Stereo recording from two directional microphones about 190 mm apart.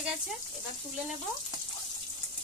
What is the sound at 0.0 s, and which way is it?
Speech, centre (ahead or behind).